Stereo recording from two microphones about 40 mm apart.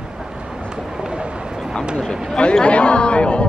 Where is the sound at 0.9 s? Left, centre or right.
Centre.